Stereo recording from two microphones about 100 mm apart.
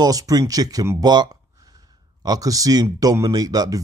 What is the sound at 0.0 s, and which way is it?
A man's voice, 40° right (ahead or behind).